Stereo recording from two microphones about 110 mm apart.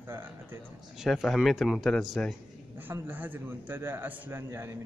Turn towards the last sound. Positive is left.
turn(degrees=-25)  # may be behind; listen again after turning